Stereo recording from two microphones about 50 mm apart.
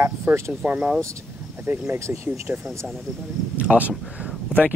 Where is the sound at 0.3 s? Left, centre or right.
Right.